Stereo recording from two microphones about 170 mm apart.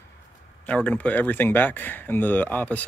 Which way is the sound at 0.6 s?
5° left (ahead or behind).